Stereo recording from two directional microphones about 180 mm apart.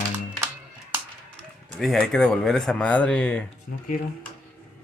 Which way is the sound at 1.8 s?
Centre (ahead or behind).